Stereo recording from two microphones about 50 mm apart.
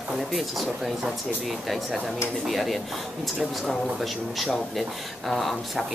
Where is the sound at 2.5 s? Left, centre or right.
Centre.